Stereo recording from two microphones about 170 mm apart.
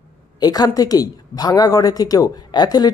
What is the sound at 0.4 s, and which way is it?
A woman's voice, 25° left (ahead or behind).